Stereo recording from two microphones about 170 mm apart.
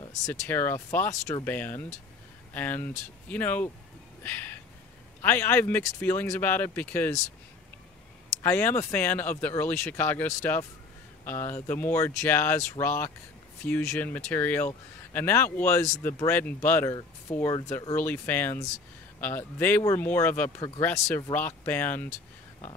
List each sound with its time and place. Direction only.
0.3 s speech: 10° left (ahead or behind)
4.2 s a sound: 10° left (ahead or behind)
5.2 s speech: 10° left (ahead or behind)
8.4 s speech: 15° left (ahead or behind)